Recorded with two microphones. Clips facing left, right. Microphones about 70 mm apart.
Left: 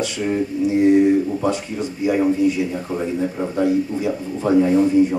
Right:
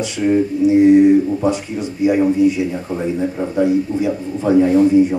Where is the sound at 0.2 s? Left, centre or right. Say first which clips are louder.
Right 7 dB; centre.